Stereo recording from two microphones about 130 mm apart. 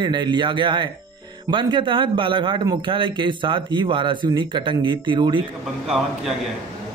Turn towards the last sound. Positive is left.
turn(degrees=-5)  # may be behind; listen again after turning